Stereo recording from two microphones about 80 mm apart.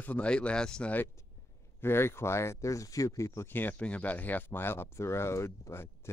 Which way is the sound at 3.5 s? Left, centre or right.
Left.